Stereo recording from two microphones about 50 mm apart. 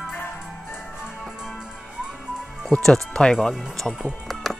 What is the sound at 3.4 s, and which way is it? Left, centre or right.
Speech, centre.